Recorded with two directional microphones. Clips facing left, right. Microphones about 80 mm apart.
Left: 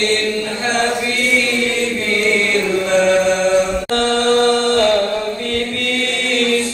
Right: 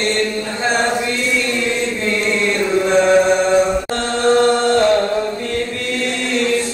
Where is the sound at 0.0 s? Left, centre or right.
Right.